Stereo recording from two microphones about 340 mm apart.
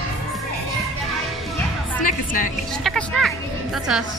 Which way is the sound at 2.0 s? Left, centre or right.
Left.